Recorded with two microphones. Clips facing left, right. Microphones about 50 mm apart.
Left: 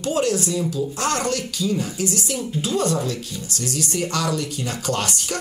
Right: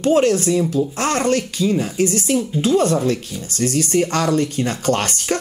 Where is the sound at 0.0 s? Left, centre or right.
Right.